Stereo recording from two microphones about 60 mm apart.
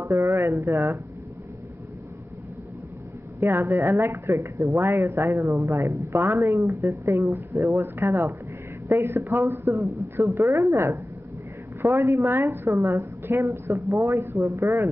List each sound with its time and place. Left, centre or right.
0.0 s speech: right
3.3 s speech: right
4.0 s speech: right
6.1 s speech: right
6.4 s speech: right
7.8 s speech: right